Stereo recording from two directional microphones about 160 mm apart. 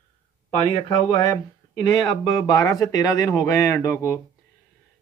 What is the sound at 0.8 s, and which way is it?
Speech, 25° left (ahead or behind).